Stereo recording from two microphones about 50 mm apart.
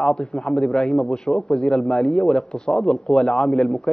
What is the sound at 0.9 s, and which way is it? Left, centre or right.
Speech, centre.